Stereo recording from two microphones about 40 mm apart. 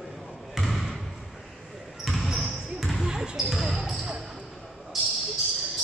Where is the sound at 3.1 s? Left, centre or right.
Centre.